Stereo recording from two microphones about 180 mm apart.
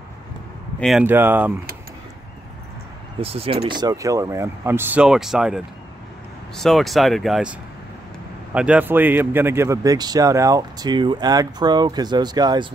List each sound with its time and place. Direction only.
0.7 s speech: centre (ahead or behind)
1.0 s speech: 10° right (ahead or behind)
3.2 s speech: 30° right (ahead or behind); by 7.5 s centre (ahead or behind)
8.5 s speech: 5° right (ahead or behind); by 12.6 s 25° right (ahead or behind)